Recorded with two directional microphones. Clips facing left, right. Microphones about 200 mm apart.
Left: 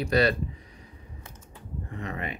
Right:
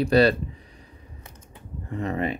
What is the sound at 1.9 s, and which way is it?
Speech, 35° right (ahead or behind).